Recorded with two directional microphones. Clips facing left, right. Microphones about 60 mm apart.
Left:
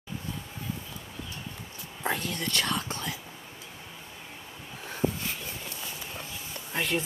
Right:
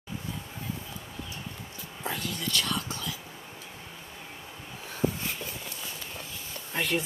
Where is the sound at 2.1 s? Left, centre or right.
Left.